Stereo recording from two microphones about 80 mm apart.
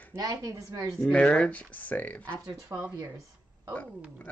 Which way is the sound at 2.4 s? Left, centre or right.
Right.